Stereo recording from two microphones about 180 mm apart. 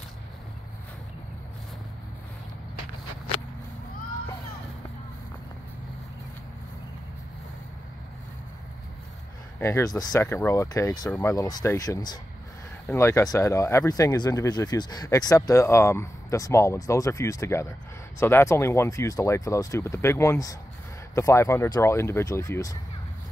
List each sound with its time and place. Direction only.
9.6 s speech: 15° left (ahead or behind)